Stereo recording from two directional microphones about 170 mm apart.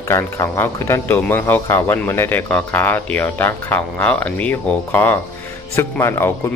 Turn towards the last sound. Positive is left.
turn(degrees=15)  # may be behind; listen again after turning